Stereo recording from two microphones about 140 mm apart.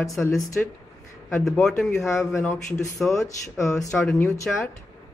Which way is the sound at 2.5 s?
20° left (ahead or behind).